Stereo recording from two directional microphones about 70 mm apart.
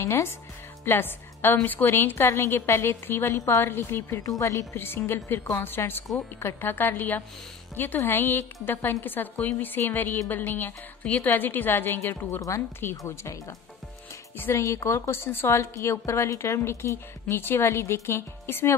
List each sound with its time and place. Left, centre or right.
0.0 s a woman's voice: left
4.2 s speech: left
4.7 s a woman's voice: left
12.4 s speech: left
14.3 s speech: left
14.6 s a woman's voice: left